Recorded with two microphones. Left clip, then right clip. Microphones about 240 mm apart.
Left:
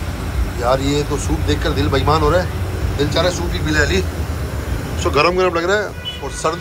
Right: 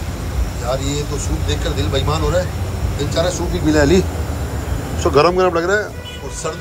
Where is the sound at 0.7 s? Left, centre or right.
Centre.